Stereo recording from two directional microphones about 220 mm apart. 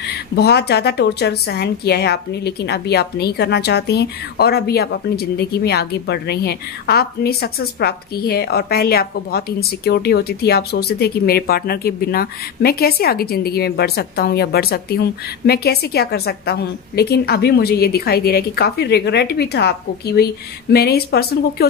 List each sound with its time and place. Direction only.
0.4 s a woman's voice: 50° left (ahead or behind)